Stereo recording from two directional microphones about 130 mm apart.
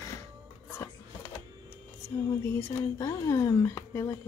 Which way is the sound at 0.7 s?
20° left (ahead or behind).